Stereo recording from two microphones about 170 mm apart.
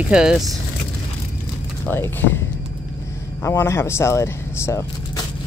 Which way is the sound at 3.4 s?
15° left (ahead or behind).